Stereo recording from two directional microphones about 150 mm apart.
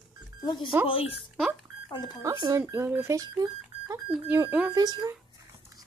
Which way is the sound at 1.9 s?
30° left (ahead or behind).